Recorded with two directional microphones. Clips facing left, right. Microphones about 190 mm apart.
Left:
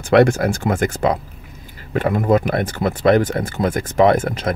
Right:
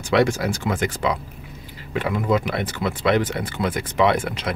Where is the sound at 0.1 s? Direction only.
55° left (ahead or behind).